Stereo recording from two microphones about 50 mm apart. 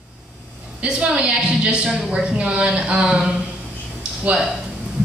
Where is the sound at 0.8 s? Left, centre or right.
Centre.